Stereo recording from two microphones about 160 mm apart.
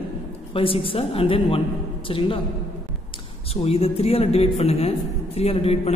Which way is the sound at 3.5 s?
40° left (ahead or behind).